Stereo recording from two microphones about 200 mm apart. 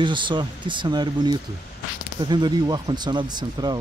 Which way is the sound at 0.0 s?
25° right (ahead or behind).